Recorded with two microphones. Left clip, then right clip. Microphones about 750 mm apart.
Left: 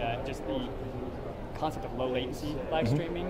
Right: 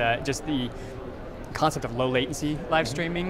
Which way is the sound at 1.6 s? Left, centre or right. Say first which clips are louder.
Right 8 dB; right.